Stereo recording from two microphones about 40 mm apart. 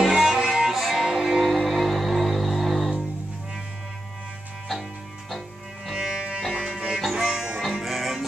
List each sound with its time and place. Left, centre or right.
0.0 s music: centre
1.0 s music: centre
1.4 s music: centre
5.9 s music: centre
6.1 s music: right; by 8.3 s centre